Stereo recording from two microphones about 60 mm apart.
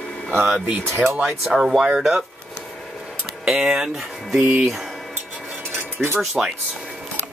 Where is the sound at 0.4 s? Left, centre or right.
Centre.